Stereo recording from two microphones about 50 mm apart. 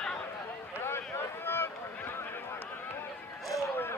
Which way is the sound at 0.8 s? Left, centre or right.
Left.